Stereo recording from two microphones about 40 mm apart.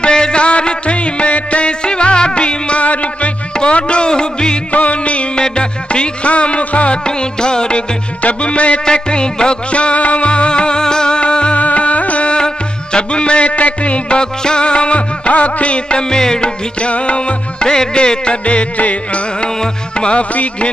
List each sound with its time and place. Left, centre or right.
0.0 s music: left
3.5 s music: left
4.7 s music: left
7.1 s music: left
12.4 s music: left